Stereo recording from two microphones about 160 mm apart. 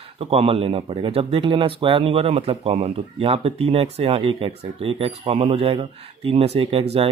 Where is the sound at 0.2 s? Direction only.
40° right (ahead or behind).